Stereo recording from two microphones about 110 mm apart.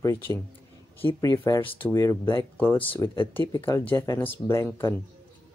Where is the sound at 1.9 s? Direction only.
30° left (ahead or behind).